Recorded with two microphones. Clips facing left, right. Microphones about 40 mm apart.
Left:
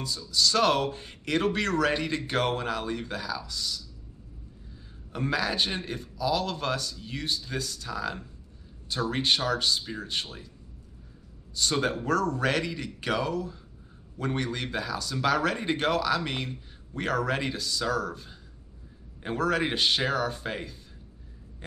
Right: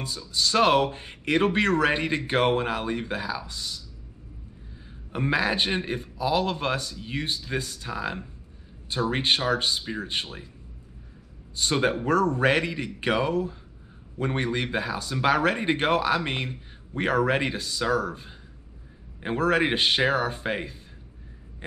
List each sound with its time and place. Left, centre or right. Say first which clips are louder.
0.0 s speech: left 1 dB; right
5.1 s speech: right 4 dB; right
11.5 s speech: right 3 dB; right